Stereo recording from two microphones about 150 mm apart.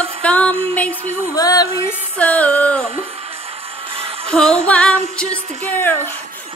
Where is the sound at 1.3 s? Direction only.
25° left (ahead or behind).